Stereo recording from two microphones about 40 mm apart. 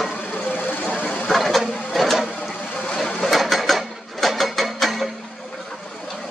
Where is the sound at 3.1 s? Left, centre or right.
Centre.